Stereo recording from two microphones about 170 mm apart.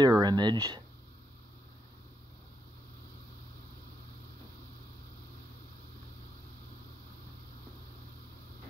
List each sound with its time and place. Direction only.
0.0 s speech: 25° right (ahead or behind)